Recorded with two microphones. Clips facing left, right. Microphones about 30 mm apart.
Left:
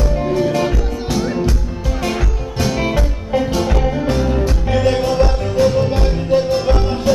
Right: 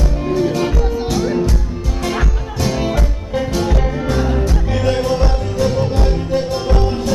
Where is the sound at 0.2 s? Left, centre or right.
Centre.